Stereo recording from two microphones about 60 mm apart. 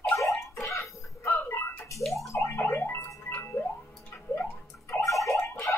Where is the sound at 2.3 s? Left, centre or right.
Left.